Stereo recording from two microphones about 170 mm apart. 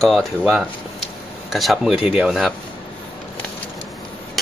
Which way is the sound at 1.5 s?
Centre (ahead or behind).